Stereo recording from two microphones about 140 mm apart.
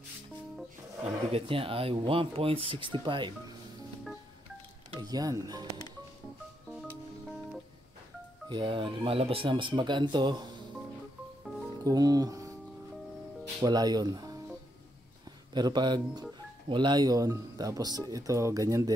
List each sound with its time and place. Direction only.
1.3 s speech: 40° right (ahead or behind)
5.0 s speech: 25° right (ahead or behind)
8.5 s speech: 35° right (ahead or behind)
11.8 s speech: 25° right (ahead or behind)
13.6 s speech: 30° right (ahead or behind)
15.5 s speech: 30° right (ahead or behind)